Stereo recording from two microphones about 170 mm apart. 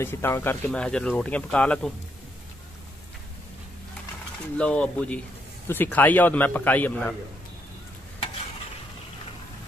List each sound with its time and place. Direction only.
0.0 s speech: 15° left (ahead or behind)
4.6 s speech: 5° left (ahead or behind)